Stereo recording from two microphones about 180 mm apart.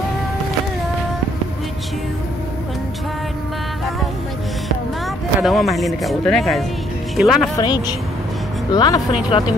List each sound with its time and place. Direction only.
5.4 s speech: centre (ahead or behind)
7.5 s speech: 20° left (ahead or behind)